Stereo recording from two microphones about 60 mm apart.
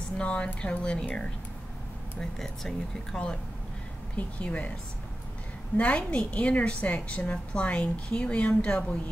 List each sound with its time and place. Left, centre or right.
0.2 s a woman's voice: centre
4.4 s a woman's voice: left
5.8 s a woman's voice: centre